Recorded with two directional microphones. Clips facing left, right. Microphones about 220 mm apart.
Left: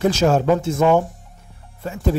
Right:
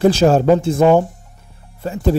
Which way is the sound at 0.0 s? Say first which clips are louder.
Right 4 dB; 30° right (ahead or behind).